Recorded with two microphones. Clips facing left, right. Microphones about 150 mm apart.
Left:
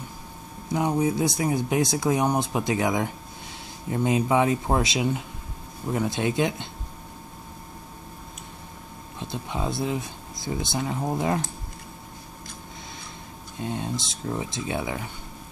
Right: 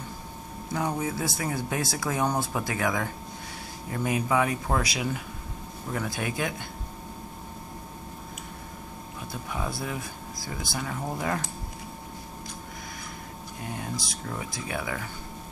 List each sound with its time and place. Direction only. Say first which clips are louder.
0.7 s speech: left 6 dB; 15° left (ahead or behind)
9.2 s speech: left 4 dB; 25° left (ahead or behind)
13.6 s speech: left 5 dB; 25° left (ahead or behind)